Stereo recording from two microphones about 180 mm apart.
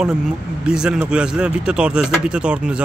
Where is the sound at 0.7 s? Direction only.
5° right (ahead or behind).